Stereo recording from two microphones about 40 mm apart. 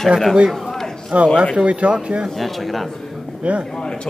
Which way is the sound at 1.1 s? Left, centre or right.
Right.